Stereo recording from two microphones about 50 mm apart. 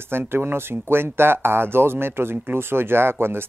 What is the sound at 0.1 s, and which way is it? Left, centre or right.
A man's voice, right.